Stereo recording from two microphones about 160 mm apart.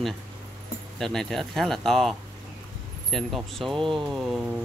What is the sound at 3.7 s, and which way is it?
Speech, 30° right (ahead or behind).